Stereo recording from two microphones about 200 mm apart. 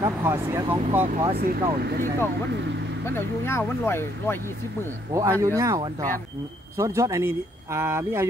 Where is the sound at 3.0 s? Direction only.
10° left (ahead or behind).